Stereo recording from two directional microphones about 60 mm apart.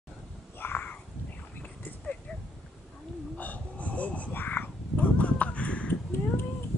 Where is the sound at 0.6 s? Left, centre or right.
Left.